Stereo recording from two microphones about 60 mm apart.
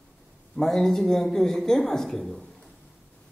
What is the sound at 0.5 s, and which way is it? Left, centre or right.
Speech, centre.